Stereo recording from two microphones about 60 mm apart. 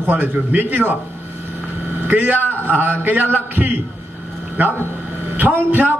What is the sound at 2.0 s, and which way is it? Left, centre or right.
A man's voice, right.